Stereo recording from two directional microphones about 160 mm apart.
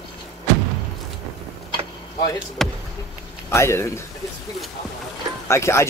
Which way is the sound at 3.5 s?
15° left (ahead or behind).